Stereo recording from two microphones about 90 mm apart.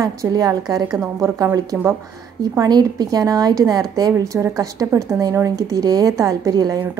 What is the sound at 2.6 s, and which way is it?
A woman's voice, 50° right (ahead or behind).